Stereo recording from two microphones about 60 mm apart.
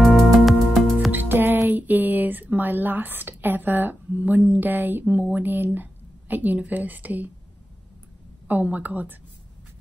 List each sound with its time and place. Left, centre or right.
0.0 s music: centre
1.1 s speech: right
8.5 s a woman's voice: right